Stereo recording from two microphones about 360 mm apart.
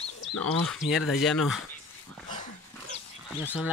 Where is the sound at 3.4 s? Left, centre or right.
Centre.